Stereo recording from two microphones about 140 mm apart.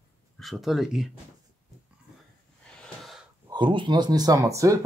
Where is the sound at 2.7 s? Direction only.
5° left (ahead or behind).